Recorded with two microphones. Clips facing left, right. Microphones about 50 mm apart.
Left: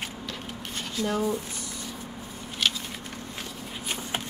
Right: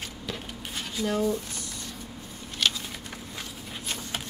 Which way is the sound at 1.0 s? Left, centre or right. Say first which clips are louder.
Right 1 dB; centre.